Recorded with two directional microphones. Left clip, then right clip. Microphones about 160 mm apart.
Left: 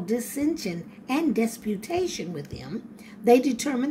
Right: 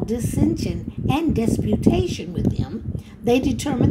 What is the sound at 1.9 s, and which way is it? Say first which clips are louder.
A woman's voice: right 4 dB; 5° right (ahead or behind).